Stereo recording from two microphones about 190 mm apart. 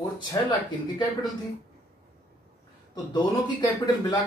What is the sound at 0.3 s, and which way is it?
Speech, 20° left (ahead or behind).